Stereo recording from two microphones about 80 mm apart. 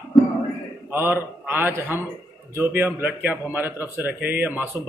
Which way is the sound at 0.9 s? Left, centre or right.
Right.